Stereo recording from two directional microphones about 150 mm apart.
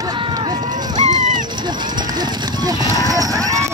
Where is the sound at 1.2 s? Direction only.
60° right (ahead or behind).